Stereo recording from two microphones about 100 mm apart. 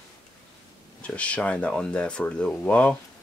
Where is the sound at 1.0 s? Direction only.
10° left (ahead or behind).